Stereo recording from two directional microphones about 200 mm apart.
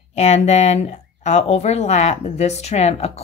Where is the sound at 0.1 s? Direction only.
35° left (ahead or behind).